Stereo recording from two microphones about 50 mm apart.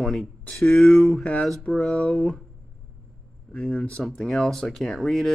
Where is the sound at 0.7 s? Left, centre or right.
Centre.